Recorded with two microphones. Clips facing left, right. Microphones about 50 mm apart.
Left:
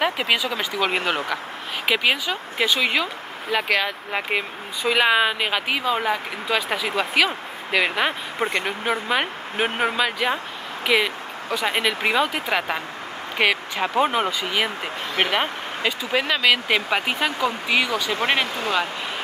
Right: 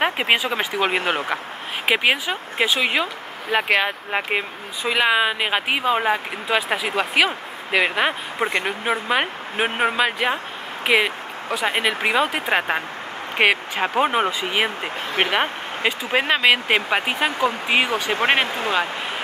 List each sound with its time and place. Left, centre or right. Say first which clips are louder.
0.0 s speech: right 2 dB; right
4.3 s speech: right 1 dB; centre
5.5 s speech: right 2 dB; right
10.9 s a sound: right 2 dB; right
11.6 s speech: right 1 dB; centre
14.0 s speech: right 2 dB; centre
14.4 s speech: right 2 dB; right